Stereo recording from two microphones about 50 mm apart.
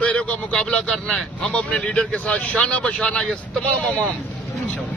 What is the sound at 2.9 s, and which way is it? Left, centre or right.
Speech, centre.